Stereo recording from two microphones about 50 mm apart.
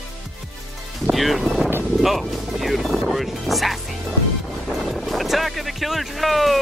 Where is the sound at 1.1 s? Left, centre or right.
Centre.